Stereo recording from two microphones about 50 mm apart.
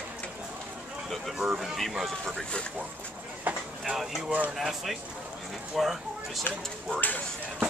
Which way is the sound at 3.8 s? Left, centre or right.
Centre.